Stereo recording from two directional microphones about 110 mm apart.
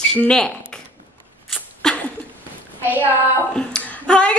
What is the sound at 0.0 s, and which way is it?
Speech, 5° left (ahead or behind).